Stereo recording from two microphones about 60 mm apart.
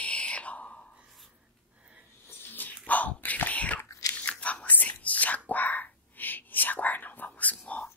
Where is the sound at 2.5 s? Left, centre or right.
Left.